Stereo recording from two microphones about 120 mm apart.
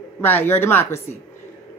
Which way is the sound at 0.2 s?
15° left (ahead or behind).